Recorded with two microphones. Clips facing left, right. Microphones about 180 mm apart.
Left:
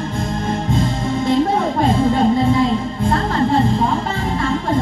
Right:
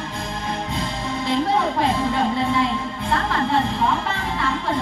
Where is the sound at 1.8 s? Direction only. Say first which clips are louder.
Left 6 dB; 40° left (ahead or behind).